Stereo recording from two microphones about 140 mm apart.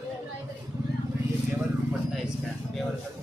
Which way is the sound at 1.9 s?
5° right (ahead or behind).